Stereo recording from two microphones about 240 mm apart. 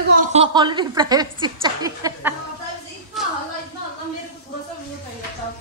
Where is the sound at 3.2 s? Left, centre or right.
Centre.